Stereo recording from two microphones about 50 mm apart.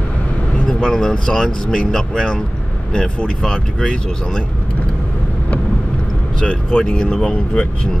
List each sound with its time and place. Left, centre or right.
0.7 s speech: centre
6.4 s speech: centre